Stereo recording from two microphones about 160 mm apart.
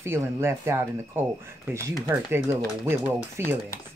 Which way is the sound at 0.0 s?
15° right (ahead or behind).